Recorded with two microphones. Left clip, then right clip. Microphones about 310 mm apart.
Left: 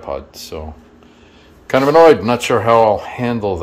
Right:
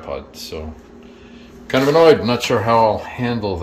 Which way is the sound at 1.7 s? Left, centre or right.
Centre.